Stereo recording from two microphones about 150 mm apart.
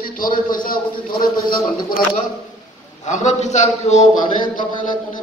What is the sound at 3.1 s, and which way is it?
A man's voice, 50° left (ahead or behind).